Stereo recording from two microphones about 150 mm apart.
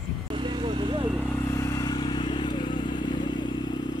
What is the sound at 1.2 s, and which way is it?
Vehicle, 15° left (ahead or behind).